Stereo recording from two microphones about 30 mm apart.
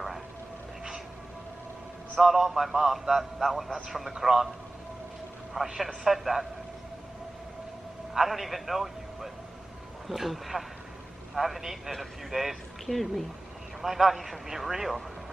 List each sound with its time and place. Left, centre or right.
2.2 s a man's voice: centre
5.5 s a man's voice: right
6.0 s a man's voice: centre
8.1 s a man's voice: centre
13.7 s a man's voice: centre